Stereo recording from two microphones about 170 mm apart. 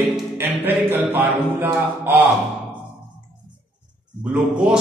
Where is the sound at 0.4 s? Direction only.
10° right (ahead or behind).